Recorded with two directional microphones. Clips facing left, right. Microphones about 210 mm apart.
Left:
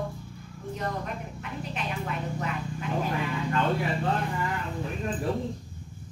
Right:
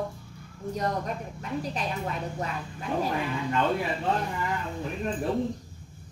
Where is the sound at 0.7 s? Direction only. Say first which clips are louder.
Right 3 dB; 35° right (ahead or behind).